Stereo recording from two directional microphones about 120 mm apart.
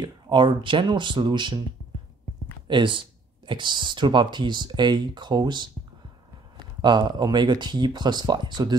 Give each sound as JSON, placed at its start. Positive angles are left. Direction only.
{"t": 0.0, "sound": "speech", "side_deg": -40}
{"t": 2.7, "sound": "speech", "side_deg": -45}
{"t": 6.8, "sound": "speech", "side_deg": -40}